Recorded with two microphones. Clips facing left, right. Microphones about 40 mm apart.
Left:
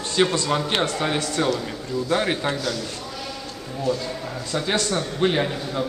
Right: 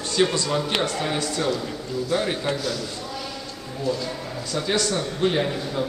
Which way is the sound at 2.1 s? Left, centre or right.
Left.